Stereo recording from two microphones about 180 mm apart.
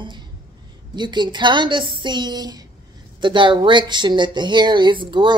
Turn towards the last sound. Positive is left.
turn(degrees=-25)  # may be behind; listen again after turning